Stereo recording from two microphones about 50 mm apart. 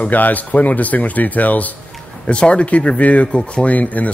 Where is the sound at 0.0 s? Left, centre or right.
Left.